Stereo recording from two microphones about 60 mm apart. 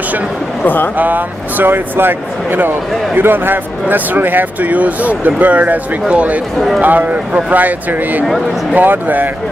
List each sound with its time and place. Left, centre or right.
0.9 s speech: right